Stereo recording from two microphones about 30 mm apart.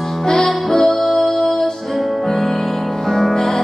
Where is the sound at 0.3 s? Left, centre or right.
Centre.